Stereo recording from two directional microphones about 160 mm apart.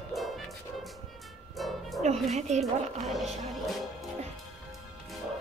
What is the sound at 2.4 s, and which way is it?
Speech, 45° right (ahead or behind).